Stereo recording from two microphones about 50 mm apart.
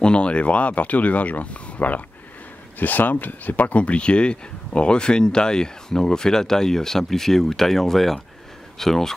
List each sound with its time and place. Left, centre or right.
0.0 s speech: left